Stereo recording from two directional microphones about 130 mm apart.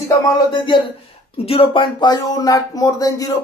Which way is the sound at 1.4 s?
45° left (ahead or behind).